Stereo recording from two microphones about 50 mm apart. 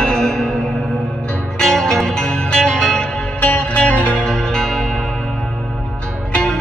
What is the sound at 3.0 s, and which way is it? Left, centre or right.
Music, left.